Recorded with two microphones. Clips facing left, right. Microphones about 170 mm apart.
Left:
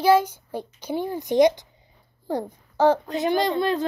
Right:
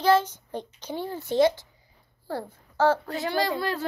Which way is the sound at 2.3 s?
15° left (ahead or behind).